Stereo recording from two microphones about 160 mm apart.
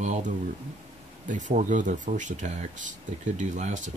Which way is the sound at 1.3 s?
55° right (ahead or behind).